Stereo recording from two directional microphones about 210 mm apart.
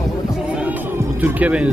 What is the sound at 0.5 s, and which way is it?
Music, 10° right (ahead or behind).